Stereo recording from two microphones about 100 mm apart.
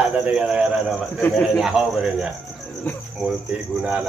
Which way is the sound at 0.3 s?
5° right (ahead or behind).